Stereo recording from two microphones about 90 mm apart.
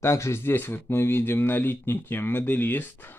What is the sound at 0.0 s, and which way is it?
Speech, 35° left (ahead or behind).